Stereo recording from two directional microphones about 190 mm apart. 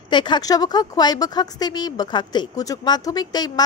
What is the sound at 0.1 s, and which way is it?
Speech, 25° left (ahead or behind).